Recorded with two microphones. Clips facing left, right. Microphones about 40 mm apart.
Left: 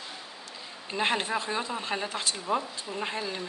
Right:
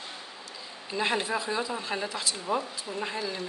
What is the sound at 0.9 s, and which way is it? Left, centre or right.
Speech, left.